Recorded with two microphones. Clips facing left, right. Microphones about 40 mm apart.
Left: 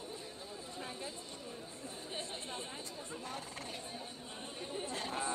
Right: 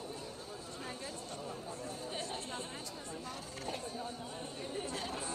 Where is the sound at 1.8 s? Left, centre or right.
Left.